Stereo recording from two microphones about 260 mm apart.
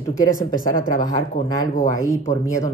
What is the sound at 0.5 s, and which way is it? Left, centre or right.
Speech, left.